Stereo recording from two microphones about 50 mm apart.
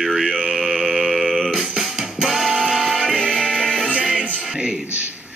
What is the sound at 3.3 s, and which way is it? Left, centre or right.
Music, centre.